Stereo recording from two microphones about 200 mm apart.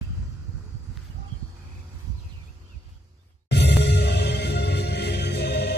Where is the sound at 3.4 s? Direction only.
60° left (ahead or behind).